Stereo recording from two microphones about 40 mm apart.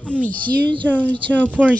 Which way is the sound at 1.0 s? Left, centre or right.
Left.